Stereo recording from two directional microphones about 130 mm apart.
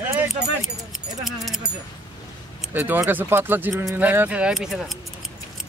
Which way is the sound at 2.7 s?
15° right (ahead or behind).